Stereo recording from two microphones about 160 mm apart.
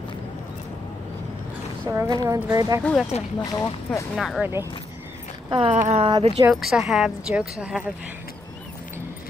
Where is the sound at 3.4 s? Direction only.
20° left (ahead or behind).